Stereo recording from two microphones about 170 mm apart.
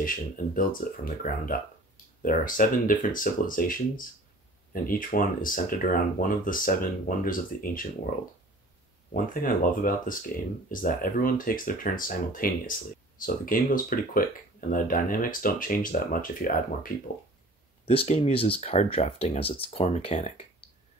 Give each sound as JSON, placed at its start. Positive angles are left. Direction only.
{"t": 0.0, "sound": "speech", "side_deg": 55}
{"t": 9.1, "sound": "speech", "side_deg": 55}
{"t": 17.8, "sound": "speech", "side_deg": 35}